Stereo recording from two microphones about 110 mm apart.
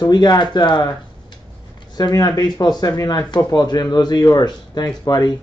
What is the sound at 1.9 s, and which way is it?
Speech, 40° left (ahead or behind).